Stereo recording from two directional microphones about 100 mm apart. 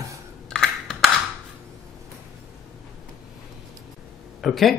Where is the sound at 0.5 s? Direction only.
5° left (ahead or behind).